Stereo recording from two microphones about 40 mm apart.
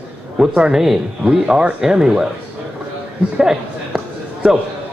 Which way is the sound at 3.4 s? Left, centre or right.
Centre.